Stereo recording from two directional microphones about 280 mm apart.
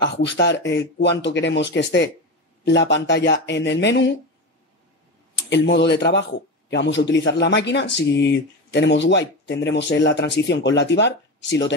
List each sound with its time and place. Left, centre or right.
0.0 s speech: left
5.5 s speech: left